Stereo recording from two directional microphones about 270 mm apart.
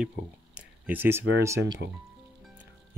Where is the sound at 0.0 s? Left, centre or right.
Centre.